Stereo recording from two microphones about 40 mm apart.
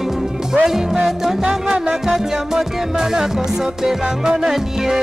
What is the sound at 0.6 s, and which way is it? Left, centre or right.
Music, centre.